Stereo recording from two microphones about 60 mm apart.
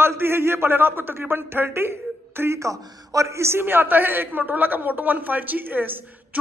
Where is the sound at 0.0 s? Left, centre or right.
Right.